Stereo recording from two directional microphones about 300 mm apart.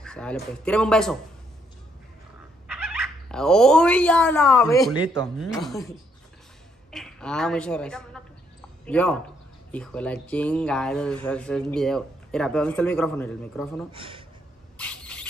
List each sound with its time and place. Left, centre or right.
0.0 s a man's voice: centre
2.7 s speech: centre
5.4 s speech: centre
6.9 s a woman's voice: centre
13.9 s speech: centre
14.8 s rodents: centre